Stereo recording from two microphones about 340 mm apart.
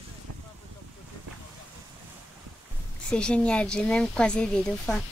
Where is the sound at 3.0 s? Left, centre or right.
Centre.